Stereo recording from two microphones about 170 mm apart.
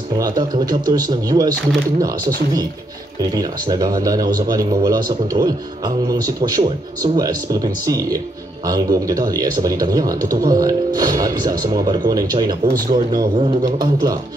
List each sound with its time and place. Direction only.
0.2 s speech: 25° right (ahead or behind)